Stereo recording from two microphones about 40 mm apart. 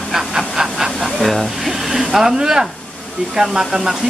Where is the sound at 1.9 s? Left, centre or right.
Centre.